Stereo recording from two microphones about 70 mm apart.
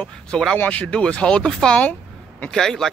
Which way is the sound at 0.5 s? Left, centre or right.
Left.